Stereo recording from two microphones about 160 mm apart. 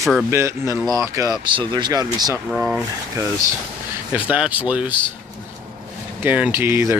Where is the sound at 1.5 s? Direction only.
30° right (ahead or behind).